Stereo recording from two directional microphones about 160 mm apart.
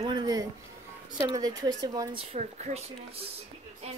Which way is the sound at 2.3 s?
45° right (ahead or behind).